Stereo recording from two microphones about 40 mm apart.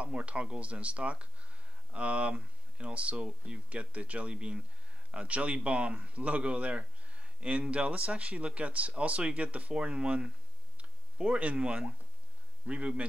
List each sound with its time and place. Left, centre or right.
0.0 s a man's voice: right